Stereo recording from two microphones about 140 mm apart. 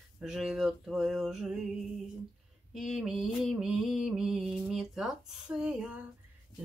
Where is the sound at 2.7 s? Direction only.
Centre (ahead or behind).